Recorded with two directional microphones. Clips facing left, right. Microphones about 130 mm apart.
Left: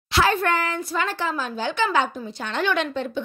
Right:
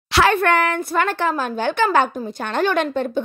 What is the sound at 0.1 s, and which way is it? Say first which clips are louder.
A woman's voice: right 4 dB; 65° right (ahead or behind).